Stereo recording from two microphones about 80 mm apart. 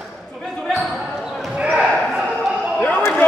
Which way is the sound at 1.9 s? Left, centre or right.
Centre.